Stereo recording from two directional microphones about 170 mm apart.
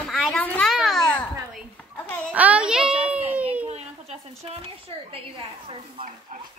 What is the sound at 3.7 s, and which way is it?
A woman's voice, 40° right (ahead or behind).